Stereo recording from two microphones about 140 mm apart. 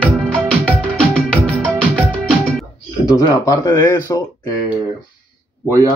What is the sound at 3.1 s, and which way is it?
Speech, 25° left (ahead or behind).